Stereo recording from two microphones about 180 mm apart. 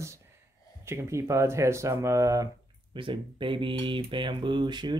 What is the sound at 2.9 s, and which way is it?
Speech, 30° right (ahead or behind).